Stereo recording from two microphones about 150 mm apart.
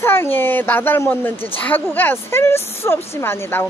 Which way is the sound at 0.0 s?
15° left (ahead or behind).